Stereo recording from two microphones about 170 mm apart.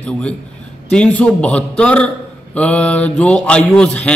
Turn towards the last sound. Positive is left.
turn(degrees=5)  # may be behind; listen again after turning